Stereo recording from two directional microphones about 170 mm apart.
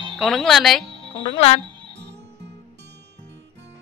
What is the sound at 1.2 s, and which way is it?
Speech, 30° left (ahead or behind).